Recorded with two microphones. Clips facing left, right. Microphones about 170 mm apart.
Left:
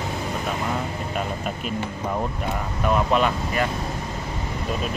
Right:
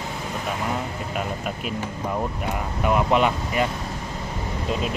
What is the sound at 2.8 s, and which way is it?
Speech, 15° right (ahead or behind).